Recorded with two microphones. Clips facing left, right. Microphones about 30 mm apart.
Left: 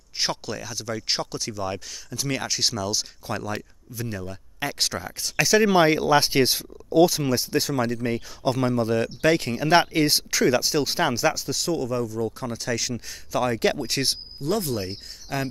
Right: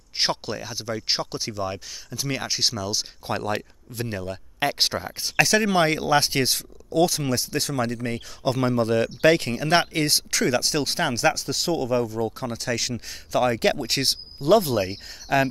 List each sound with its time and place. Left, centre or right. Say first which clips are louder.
0.2 s speech: right 2 dB; right
0.9 s speech: right 1 dB; centre
3.4 s speech: right 4 dB; right
4.7 s speech: right 3 dB; right
5.4 s speech: left 1 dB; centre
9.4 s speech: left 2 dB; centre
11.6 s speech: right 3 dB; right; by 14.1 s centre
14.4 s speech: right 7 dB; right